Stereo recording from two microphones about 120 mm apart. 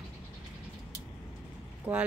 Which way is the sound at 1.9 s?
10° right (ahead or behind).